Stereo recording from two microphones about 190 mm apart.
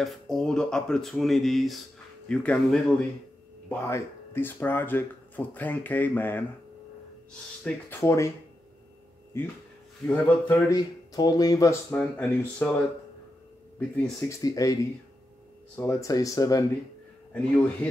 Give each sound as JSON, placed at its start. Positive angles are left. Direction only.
{"t": 0.0, "sound": "speech", "side_deg": 0}
{"t": 7.6, "sound": "speech", "side_deg": 15}
{"t": 10.0, "sound": "speech", "side_deg": 5}
{"t": 10.7, "sound": "speech", "side_deg": 20}
{"t": 14.4, "sound": "speech", "side_deg": 20}